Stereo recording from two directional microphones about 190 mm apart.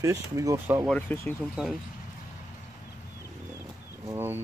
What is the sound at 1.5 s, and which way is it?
Speech, centre (ahead or behind).